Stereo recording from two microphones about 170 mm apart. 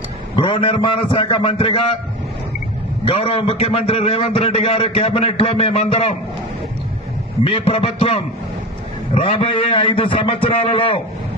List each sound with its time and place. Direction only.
0.4 s a man's voice: 30° left (ahead or behind)
3.1 s a man's voice: 35° left (ahead or behind)
7.4 s a man's voice: 35° left (ahead or behind)